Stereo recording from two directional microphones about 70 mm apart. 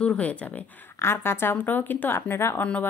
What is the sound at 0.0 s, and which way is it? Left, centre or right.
Speech, centre.